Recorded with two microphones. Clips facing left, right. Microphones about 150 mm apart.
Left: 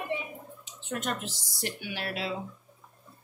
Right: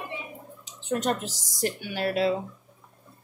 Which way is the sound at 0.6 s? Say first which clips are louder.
Right 7 dB; 35° right (ahead or behind).